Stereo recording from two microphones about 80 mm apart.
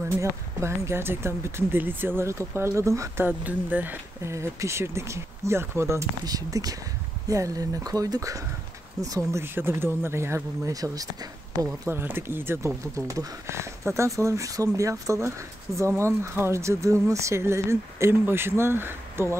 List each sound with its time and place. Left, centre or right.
0.1 s speech: right
3.3 s speech: right
4.2 s speech: right
6.2 s speech: right
9.4 s speech: right
11.9 s speech: right
12.9 s speech: right